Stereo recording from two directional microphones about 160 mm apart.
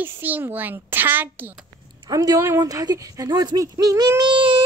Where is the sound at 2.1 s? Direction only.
20° right (ahead or behind).